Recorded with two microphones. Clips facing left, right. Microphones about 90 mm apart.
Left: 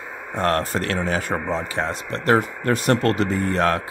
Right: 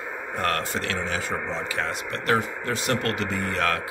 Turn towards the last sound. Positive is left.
turn(degrees=35)  # may be behind; listen again after turning